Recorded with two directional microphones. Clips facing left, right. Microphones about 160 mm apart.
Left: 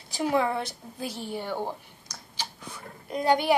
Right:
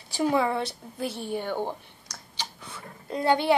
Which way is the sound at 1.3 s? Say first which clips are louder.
Right 1 dB; 10° left (ahead or behind).